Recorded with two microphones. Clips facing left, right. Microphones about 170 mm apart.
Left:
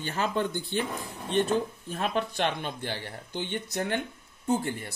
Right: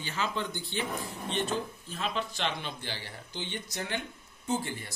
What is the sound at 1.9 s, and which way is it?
Speech, 55° left (ahead or behind).